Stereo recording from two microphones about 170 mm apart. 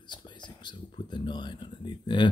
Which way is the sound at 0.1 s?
25° left (ahead or behind).